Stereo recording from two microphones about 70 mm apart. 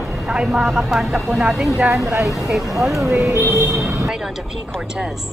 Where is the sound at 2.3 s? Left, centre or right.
Centre.